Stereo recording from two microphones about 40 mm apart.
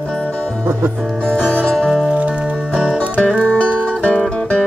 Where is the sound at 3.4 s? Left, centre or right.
Left.